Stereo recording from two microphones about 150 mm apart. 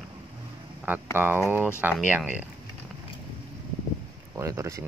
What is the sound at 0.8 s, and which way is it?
Speech, 10° right (ahead or behind).